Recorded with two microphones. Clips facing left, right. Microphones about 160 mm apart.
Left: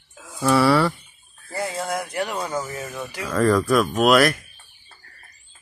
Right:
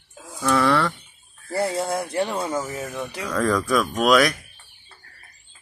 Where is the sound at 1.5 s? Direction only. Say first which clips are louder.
Right 3 dB; 30° right (ahead or behind).